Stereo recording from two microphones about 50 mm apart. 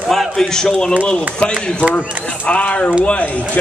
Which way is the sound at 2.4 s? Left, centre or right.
Left.